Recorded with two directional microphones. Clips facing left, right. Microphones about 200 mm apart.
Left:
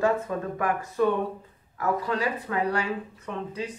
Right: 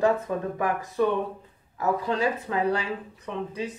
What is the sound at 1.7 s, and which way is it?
Speech, 20° right (ahead or behind).